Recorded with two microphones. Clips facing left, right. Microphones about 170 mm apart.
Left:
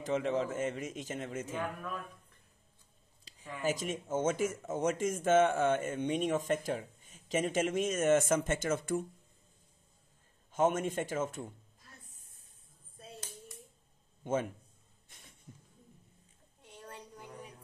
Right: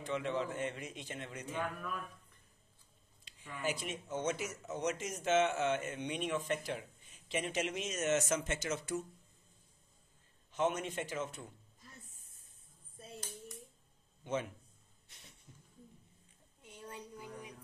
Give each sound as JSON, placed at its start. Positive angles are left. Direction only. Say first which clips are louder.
{"t": 0.0, "sound": "speech", "louder": "left 5 dB", "side_deg": 40}
{"t": 3.3, "sound": "speech", "louder": "left 5 dB", "side_deg": 40}
{"t": 10.5, "sound": "speech", "louder": "left 5 dB", "side_deg": 45}
{"t": 14.2, "sound": "a man's voice", "louder": "left 5 dB", "side_deg": 45}
{"t": 15.0, "sound": "a sound", "louder": "left 1 dB", "side_deg": 50}
{"t": 16.6, "sound": "a sound", "louder": "right 1 dB", "side_deg": -5}